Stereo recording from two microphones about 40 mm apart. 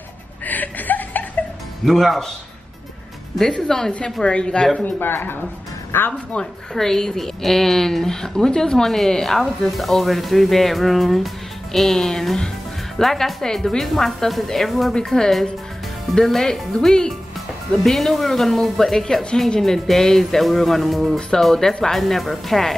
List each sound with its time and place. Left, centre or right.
0.5 s a sound: left
1.9 s speech: centre
3.6 s a woman's voice: centre
4.0 s a woman's voice: left
5.0 s speech: left
6.4 s a woman's voice: left
6.7 s a woman's voice: centre
15.0 s a woman's voice: centre